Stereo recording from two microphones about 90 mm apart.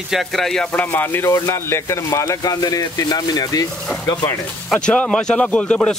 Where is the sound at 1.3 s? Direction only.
30° left (ahead or behind).